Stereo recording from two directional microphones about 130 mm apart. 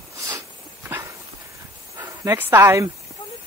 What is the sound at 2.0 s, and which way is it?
Speech, 20° right (ahead or behind).